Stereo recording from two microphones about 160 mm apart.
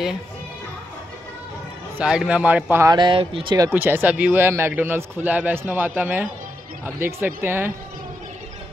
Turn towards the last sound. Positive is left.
turn(degrees=-10)  # may be behind; listen again after turning